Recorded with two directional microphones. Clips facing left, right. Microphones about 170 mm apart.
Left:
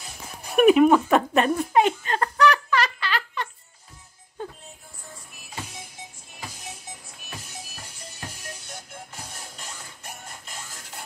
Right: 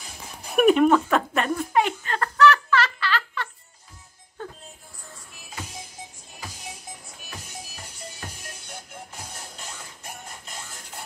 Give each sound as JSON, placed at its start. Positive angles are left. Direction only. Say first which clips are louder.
{"t": 0.6, "sound": "giggle", "louder": "left 2 dB", "side_deg": 5}
{"t": 4.4, "sound": "music", "louder": "left 2 dB", "side_deg": 15}